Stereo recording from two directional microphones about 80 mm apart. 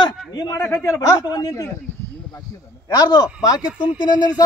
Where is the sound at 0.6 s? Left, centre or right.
Left.